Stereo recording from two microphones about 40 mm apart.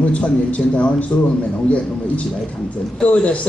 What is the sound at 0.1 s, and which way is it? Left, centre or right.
Speech, left.